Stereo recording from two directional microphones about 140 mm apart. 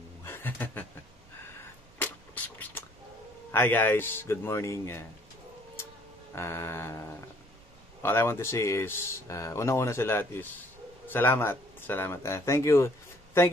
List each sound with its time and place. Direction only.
0.2 s a sound: 15° left (ahead or behind)
2.0 s vehicle: 10° left (ahead or behind)
3.5 s a man's voice: 15° left (ahead or behind)
6.3 s a man's voice: 20° left (ahead or behind)